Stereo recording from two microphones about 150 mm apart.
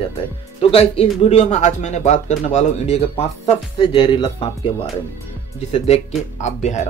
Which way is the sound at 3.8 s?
35° left (ahead or behind).